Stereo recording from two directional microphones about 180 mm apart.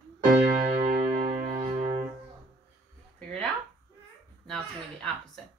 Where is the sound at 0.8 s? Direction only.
35° right (ahead or behind).